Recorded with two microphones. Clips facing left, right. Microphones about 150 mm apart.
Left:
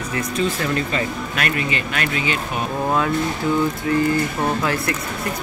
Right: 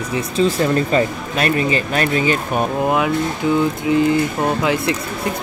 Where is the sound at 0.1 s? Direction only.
35° right (ahead or behind).